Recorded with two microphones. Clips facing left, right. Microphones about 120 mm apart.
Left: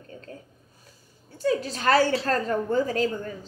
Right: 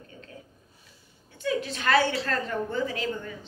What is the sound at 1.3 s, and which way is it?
A woman's voice, 35° left (ahead or behind).